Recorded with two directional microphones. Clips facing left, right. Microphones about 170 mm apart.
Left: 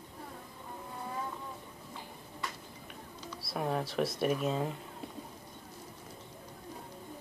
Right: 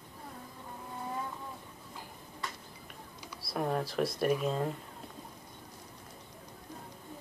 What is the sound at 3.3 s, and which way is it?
Speech, centre (ahead or behind).